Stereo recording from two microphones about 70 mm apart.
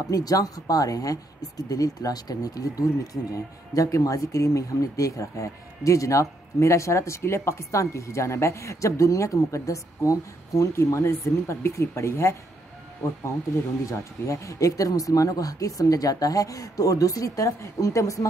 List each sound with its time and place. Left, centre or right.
0.1 s speech: left
13.8 s speech: left